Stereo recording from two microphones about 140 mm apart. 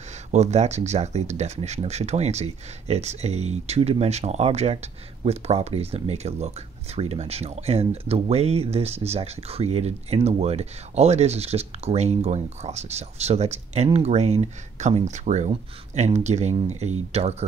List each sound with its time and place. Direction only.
0.3 s speech: 55° right (ahead or behind)